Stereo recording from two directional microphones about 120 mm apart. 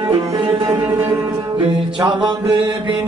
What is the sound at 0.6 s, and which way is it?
Music, 20° right (ahead or behind).